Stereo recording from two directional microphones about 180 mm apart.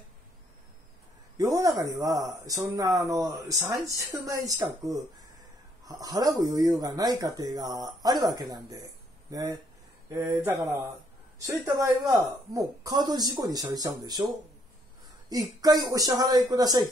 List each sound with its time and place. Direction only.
1.4 s speech: 20° right (ahead or behind)
5.9 s speech: 20° right (ahead or behind)
15.3 s speech: 20° right (ahead or behind)